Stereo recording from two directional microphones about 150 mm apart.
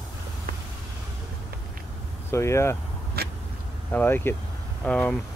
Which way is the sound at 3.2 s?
90° right.